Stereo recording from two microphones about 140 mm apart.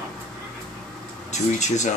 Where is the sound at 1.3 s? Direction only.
55° left (ahead or behind).